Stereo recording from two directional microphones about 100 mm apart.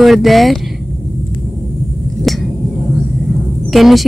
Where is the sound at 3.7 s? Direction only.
Centre (ahead or behind).